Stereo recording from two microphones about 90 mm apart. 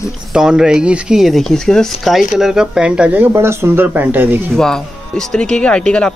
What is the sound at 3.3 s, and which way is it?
Speech, 30° right (ahead or behind).